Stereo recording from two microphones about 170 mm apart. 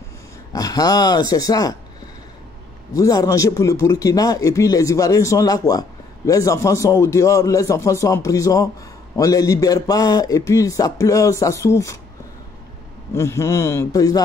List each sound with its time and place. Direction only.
0.5 s speech: 20° left (ahead or behind)
2.9 s speech: 20° left (ahead or behind)
13.1 s a man's voice: 15° left (ahead or behind)